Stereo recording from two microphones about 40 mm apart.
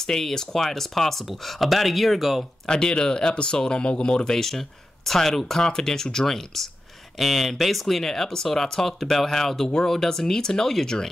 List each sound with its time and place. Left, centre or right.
0.0 s speech: centre
2.7 s speech: centre
4.3 s speech: centre